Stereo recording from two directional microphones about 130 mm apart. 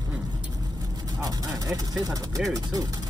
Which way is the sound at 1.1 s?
25° right (ahead or behind).